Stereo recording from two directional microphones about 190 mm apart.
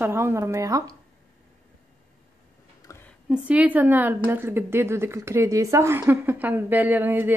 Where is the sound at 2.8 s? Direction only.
15° left (ahead or behind).